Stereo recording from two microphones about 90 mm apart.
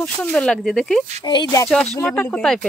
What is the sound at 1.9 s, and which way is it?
Speech, 15° left (ahead or behind).